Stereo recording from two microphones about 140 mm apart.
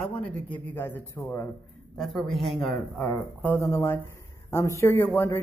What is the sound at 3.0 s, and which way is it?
Speech, 10° left (ahead or behind).